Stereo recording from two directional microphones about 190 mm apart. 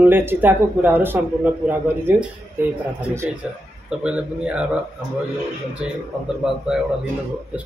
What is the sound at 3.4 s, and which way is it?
Speech, 5° right (ahead or behind).